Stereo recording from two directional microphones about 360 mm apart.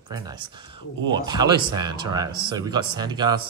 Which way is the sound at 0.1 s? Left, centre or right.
Centre.